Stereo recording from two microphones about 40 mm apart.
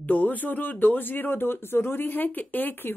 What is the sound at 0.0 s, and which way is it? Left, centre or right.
A woman's voice, left.